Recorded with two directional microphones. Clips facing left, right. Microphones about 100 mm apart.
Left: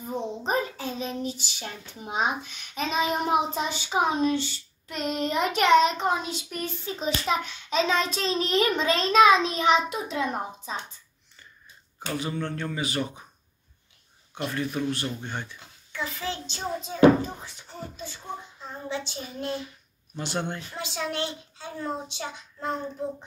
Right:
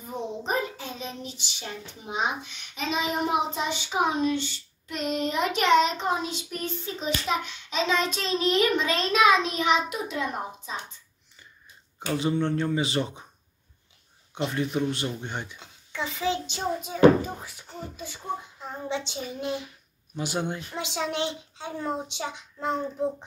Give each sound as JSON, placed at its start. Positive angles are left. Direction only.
{"t": 0.4, "sound": "child singing", "side_deg": 35}
{"t": 12.1, "sound": "a child's voice", "side_deg": -25}
{"t": 14.3, "sound": "a child's voice", "side_deg": -20}
{"t": 17.9, "sound": "child singing", "side_deg": -15}
{"t": 20.8, "sound": "a child's voice", "side_deg": -20}